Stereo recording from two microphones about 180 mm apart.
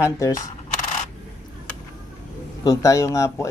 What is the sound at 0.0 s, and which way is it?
Speech, 15° left (ahead or behind).